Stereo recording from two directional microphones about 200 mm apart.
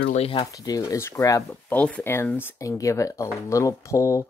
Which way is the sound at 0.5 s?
15° left (ahead or behind).